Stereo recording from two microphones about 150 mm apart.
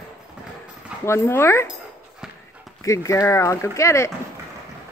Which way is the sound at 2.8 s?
20° left (ahead or behind).